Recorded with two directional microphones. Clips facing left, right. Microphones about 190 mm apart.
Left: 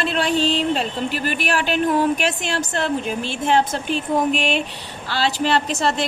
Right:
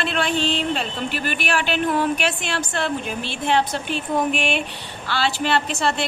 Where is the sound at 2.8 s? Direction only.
45° left (ahead or behind).